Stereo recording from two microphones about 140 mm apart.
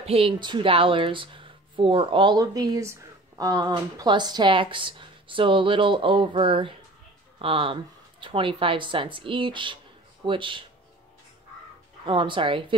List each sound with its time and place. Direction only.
0.0 s speech: 45° right (ahead or behind)
12.1 s speech: 35° right (ahead or behind)